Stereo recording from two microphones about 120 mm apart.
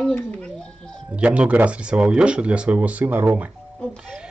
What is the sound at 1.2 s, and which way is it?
Speech, 10° right (ahead or behind).